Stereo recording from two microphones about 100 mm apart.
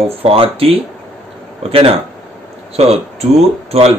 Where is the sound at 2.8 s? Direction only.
90° right.